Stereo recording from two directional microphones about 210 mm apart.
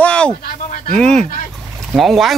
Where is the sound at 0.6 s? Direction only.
40° left (ahead or behind).